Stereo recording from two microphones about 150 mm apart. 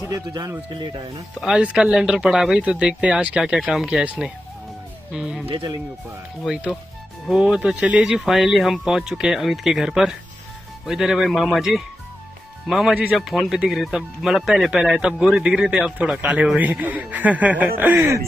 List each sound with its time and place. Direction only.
0.3 s speech: 25° right (ahead or behind)
1.4 s speech: 5° right (ahead or behind)
6.4 s speech: centre (ahead or behind)